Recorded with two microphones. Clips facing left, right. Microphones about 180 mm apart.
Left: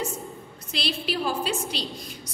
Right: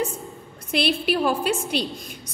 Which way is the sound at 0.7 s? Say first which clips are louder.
Right 7 dB; 55° right (ahead or behind).